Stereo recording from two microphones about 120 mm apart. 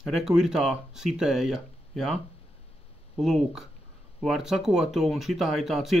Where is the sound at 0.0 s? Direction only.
5° right (ahead or behind).